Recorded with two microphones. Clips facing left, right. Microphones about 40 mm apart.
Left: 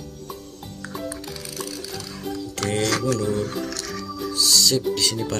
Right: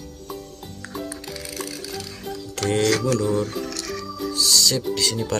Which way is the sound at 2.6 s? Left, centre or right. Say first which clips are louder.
Right 2 dB; centre.